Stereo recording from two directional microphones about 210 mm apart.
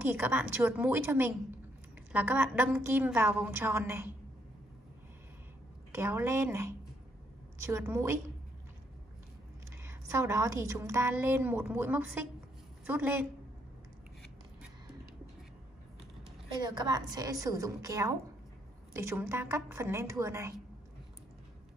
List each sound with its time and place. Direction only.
0.0 s a woman's voice: 10° right (ahead or behind)
5.9 s a woman's voice: 10° right (ahead or behind)
9.8 s a woman's voice: 15° right (ahead or behind)
16.6 s a woman's voice: 20° right (ahead or behind)